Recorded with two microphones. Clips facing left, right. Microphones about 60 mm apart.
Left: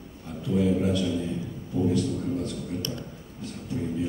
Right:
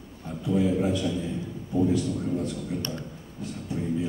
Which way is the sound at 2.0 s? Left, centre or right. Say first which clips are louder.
Even; centre.